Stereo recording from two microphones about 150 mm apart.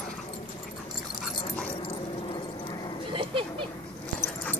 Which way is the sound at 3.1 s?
35° right (ahead or behind).